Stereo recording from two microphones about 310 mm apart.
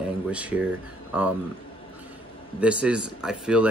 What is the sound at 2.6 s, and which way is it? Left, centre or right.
Speech, centre.